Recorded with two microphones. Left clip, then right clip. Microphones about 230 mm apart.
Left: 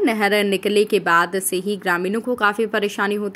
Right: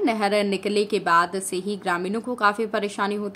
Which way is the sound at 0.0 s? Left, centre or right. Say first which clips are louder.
Left 4 dB; centre.